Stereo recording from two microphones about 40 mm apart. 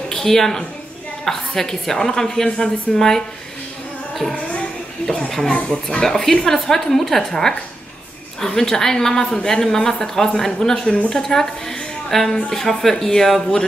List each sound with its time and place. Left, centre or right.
0.1 s a woman's voice: centre
2.4 s a woman's voice: left
3.0 s a woman's voice: centre
4.1 s music: centre
6.0 s a woman's voice: centre